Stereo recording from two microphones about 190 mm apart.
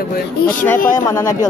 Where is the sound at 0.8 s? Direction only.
45° left (ahead or behind).